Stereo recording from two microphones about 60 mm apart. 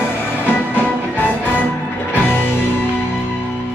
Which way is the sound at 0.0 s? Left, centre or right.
Left.